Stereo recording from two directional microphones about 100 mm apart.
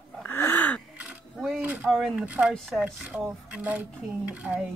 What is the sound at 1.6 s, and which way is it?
Speech, 15° right (ahead or behind).